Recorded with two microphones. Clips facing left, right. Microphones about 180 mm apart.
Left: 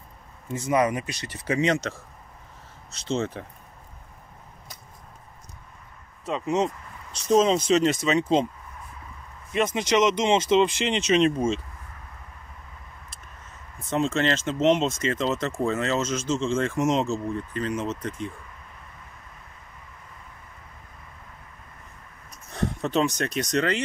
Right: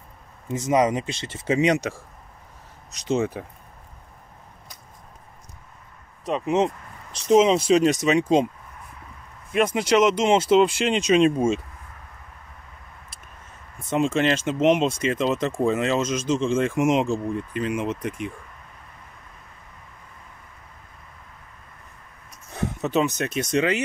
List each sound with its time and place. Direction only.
0.5 s a man's voice: 20° right (ahead or behind)
6.2 s speech: 15° right (ahead or behind)
9.5 s speech: 10° right (ahead or behind)
13.8 s speech: 10° right (ahead or behind)
22.5 s speech: 5° right (ahead or behind)